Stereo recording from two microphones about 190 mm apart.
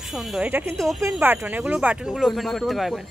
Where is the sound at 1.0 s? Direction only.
10° right (ahead or behind).